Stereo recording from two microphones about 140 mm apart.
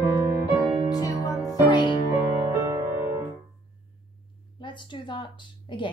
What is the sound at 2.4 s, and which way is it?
Music, 20° right (ahead or behind).